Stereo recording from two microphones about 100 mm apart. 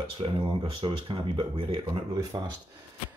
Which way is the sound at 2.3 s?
45° right (ahead or behind).